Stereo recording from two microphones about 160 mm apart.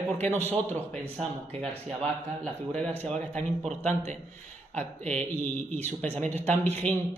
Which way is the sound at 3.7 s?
45° right (ahead or behind).